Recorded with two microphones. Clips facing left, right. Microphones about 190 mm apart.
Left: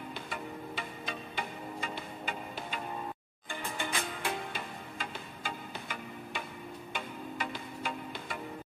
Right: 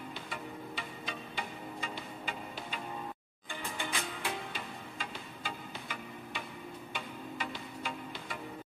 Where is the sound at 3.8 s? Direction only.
50° left (ahead or behind).